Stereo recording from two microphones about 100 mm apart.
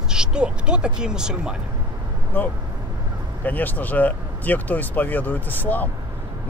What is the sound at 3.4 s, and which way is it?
Speech, 15° left (ahead or behind).